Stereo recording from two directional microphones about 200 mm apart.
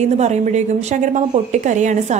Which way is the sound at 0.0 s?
35° right (ahead or behind).